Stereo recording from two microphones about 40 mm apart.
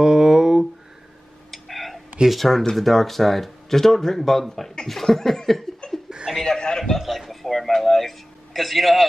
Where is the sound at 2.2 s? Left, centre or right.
Centre.